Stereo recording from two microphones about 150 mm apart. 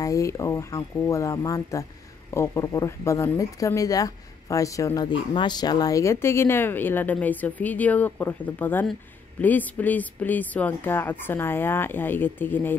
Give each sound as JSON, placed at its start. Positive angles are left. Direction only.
{"t": 0.0, "sound": "speech", "side_deg": 20}